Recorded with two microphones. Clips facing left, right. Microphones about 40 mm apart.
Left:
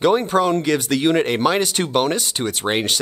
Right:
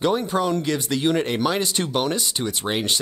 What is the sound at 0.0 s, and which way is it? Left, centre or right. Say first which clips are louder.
Speech: left 5 dB; left.